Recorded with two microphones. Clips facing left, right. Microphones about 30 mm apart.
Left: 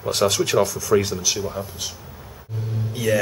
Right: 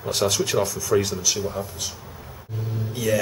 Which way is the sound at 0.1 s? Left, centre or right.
Centre.